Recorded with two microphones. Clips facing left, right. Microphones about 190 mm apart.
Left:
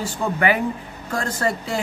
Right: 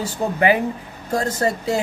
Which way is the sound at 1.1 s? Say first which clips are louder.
Right 3 dB; 25° right (ahead or behind).